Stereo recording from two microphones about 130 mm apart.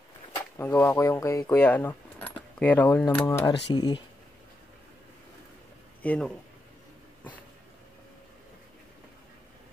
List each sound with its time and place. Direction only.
0.6 s speech: 20° left (ahead or behind)
3.7 s speech: 30° left (ahead or behind)
6.0 s speech: 5° left (ahead or behind)